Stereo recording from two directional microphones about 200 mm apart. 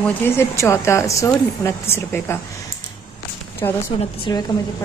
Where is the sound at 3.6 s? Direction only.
20° left (ahead or behind).